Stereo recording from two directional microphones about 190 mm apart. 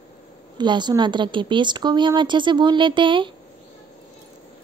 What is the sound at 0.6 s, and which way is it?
Speech, 25° right (ahead or behind).